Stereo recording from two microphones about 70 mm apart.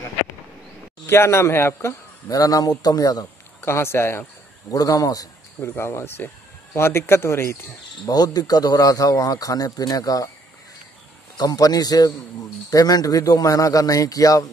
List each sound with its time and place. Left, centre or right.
1.0 s speech: left
2.2 s a man's voice: left
3.6 s speech: left
4.6 s a man's voice: left
5.6 s speech: left
8.0 s a man's voice: left
11.3 s a man's voice: left